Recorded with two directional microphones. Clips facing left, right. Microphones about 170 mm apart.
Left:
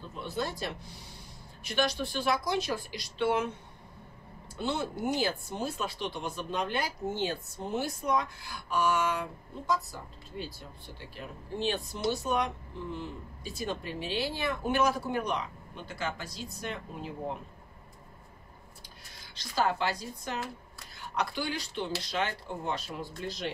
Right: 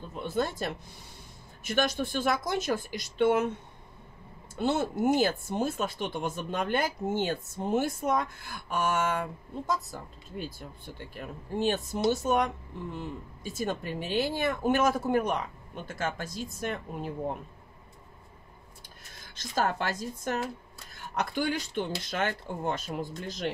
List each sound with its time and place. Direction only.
0.1 s speech: 50° right (ahead or behind)
4.6 s speech: 50° right (ahead or behind)
19.3 s speech: 50° right (ahead or behind)